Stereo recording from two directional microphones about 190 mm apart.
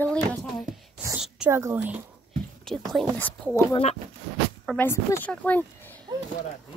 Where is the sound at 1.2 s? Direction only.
5° right (ahead or behind).